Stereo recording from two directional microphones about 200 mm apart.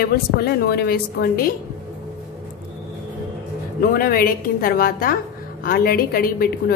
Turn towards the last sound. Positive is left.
turn(degrees=45)  # may be behind; listen again after turning